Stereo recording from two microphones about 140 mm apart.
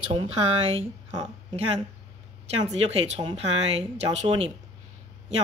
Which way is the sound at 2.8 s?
45° right (ahead or behind).